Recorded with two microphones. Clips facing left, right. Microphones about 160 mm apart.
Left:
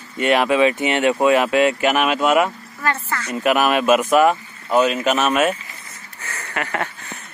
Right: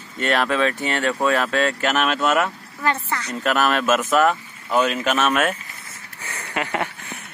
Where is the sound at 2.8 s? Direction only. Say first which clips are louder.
Even; 15° right (ahead or behind).